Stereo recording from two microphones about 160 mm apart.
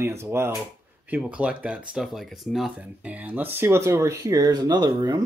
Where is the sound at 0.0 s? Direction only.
15° right (ahead or behind).